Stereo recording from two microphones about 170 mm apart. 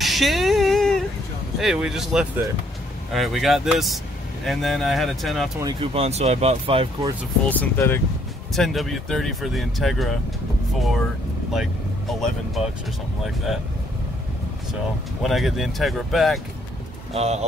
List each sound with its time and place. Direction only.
0.0 s a sound: centre (ahead or behind)
1.6 s speech: 5° right (ahead or behind)
5.6 s speech: 25° right (ahead or behind)
5.9 s speech: 40° right (ahead or behind)
7.4 s speech: 10° left (ahead or behind)
8.5 s speech: centre (ahead or behind)
12.1 s speech: centre (ahead or behind)
15.2 s speech: centre (ahead or behind)
17.1 s speech: 40° right (ahead or behind)